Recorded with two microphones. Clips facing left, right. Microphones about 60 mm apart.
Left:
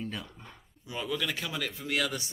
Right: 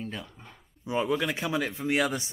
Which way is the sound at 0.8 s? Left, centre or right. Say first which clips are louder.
Right 6 dB; right.